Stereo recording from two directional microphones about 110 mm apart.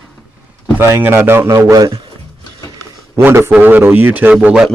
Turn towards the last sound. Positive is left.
turn(degrees=-10)  # may be behind; listen again after turning